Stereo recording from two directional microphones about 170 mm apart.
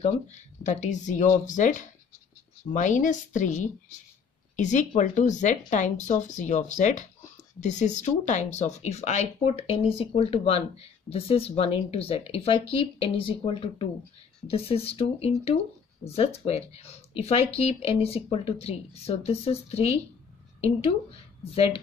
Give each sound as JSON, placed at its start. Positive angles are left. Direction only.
{"t": 0.7, "sound": "speech", "side_deg": 45}